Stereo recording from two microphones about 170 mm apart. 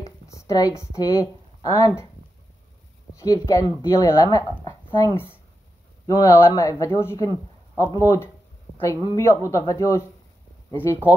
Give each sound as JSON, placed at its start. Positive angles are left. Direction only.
{"t": 0.3, "sound": "a sound", "side_deg": 20}
{"t": 0.9, "sound": "speech", "side_deg": 20}
{"t": 3.2, "sound": "speech", "side_deg": 20}